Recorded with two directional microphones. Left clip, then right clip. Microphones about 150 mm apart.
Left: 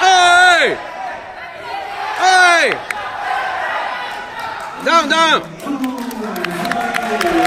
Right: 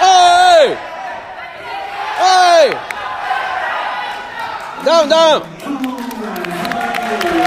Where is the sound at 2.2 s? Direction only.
20° right (ahead or behind).